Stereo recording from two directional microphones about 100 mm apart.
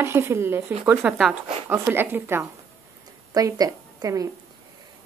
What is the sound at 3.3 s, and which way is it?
A woman's voice, 40° right (ahead or behind).